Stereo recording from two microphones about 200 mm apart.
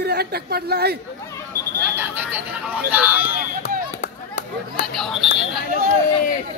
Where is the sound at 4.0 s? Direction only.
40° left (ahead or behind).